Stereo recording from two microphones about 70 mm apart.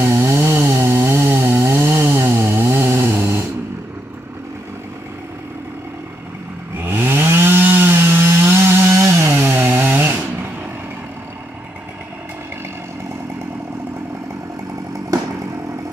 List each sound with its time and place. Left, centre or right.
0.0 s chainsaw: right
6.8 s chainsaw: right